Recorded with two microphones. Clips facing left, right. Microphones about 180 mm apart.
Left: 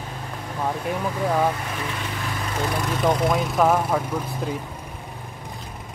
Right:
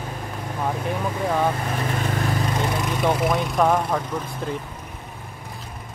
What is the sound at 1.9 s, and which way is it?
Vehicle, 45° right (ahead or behind).